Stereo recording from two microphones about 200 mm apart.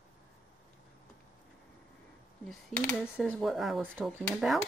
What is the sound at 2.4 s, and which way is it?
Speech, 5° left (ahead or behind).